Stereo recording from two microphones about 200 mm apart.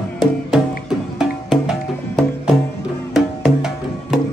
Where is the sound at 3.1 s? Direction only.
Centre (ahead or behind).